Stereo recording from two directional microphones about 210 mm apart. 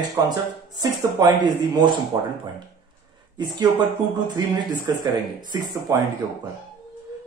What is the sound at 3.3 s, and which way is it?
Speech, 20° right (ahead or behind).